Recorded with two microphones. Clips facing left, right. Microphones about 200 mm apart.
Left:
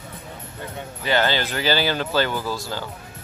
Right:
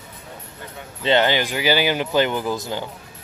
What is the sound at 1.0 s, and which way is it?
Speech, 20° right (ahead or behind).